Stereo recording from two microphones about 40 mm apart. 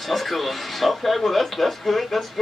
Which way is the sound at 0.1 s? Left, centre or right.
Centre.